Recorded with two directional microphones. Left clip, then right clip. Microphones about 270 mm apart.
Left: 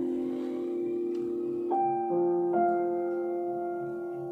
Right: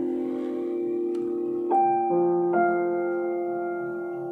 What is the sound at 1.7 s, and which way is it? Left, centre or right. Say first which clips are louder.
Piano: right 7 dB; centre.